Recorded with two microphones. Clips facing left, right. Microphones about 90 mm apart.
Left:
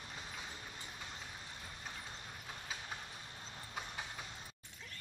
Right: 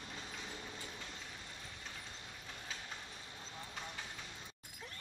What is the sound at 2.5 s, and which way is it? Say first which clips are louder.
Vehicle: left 2 dB; 20° left (ahead or behind).